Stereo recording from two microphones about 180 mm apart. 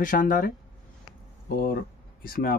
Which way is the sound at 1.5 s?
55° left (ahead or behind).